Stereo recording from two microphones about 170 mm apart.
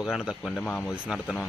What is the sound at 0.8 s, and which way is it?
Speech, 5° right (ahead or behind).